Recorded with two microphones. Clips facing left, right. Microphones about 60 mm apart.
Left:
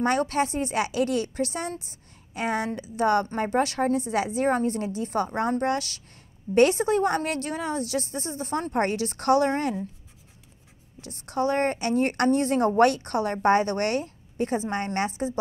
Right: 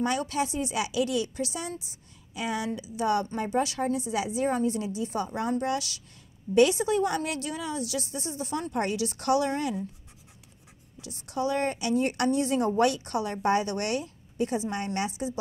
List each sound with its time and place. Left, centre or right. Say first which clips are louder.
0.0 s a woman's voice: left 4 dB; left
11.0 s a woman's voice: left 4 dB; left